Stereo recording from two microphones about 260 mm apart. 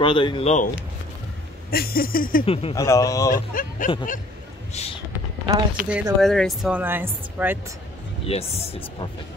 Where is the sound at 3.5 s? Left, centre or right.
Left.